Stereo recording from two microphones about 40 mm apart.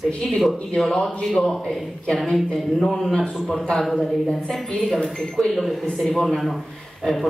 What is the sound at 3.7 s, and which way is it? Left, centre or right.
A man's voice, centre.